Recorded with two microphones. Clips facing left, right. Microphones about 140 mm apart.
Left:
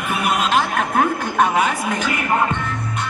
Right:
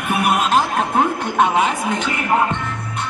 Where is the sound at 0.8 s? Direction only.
25° right (ahead or behind).